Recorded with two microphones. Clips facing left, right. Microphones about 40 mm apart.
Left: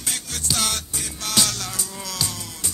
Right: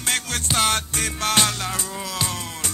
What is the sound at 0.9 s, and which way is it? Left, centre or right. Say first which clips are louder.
Music: right 5 dB; right.